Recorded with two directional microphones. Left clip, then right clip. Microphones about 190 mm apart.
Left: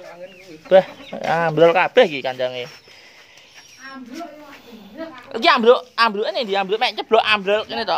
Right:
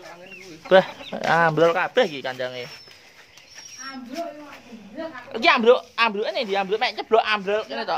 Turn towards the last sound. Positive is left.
turn(degrees=40)  # may be behind; listen again after turning